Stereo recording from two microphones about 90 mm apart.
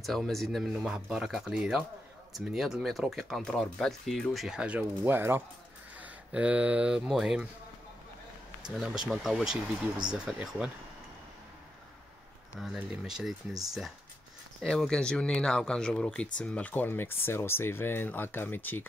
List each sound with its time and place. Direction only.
0.0 s speech: centre (ahead or behind)
0.7 s speech: 10° right (ahead or behind)
8.7 s speech: 5° right (ahead or behind)
12.7 s speech: 5° right (ahead or behind); by 18.9 s 20° left (ahead or behind)